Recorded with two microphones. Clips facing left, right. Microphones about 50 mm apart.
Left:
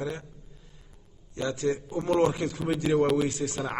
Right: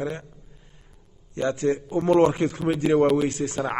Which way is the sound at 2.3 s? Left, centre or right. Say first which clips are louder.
Right 5 dB; right.